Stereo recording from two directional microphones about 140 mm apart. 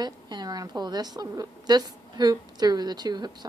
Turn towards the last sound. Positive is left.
turn(degrees=-30)  # may be behind; listen again after turning